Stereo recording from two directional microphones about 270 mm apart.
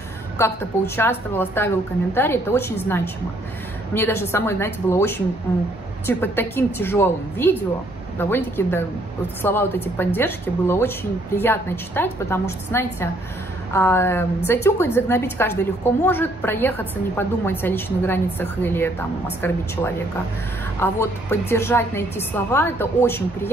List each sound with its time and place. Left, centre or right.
0.4 s a woman's voice: centre
20.8 s a woman's voice: centre